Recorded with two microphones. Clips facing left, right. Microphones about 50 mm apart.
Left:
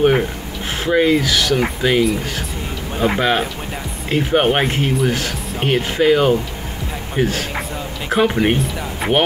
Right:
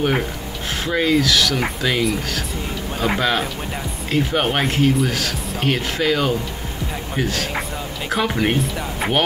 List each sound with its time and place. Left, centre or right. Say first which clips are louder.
0.8 s speech: left 3 dB; centre
3.2 s speech: left 3 dB; centre
8.5 s speech: even; centre